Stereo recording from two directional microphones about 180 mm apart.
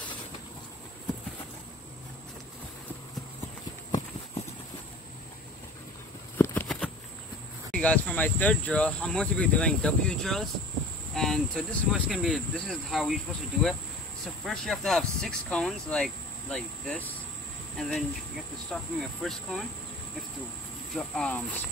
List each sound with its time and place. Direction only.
6.3 s a sound: 10° left (ahead or behind)
7.7 s speech: 5° left (ahead or behind)
20.9 s speech: 5° left (ahead or behind)